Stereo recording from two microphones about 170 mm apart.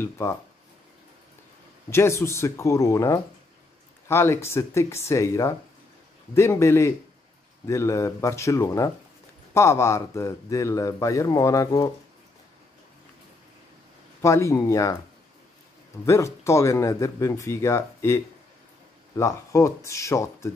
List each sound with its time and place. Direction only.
0.0 s a man's voice: 15° left (ahead or behind)
1.9 s a man's voice: 15° left (ahead or behind)
14.2 s a man's voice: 15° left (ahead or behind)
16.1 s a man's voice: 15° left (ahead or behind)